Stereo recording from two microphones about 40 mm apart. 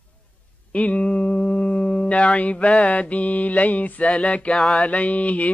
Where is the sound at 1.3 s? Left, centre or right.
Left.